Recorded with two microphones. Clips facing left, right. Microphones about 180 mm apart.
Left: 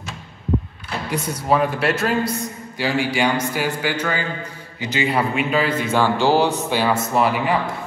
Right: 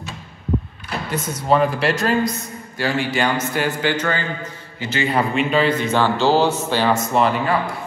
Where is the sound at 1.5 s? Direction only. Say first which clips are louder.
Right 1 dB; centre (ahead or behind).